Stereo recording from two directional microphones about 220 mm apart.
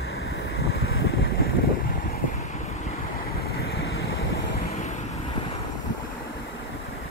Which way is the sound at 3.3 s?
45° left (ahead or behind).